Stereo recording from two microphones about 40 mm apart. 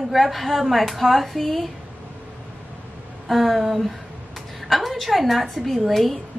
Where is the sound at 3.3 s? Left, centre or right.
Centre.